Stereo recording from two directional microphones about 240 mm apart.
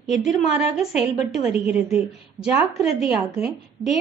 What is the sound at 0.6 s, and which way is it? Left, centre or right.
A woman's voice, centre.